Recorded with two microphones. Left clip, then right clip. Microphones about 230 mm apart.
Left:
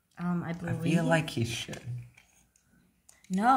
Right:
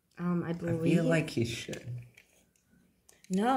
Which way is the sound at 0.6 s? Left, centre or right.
Centre.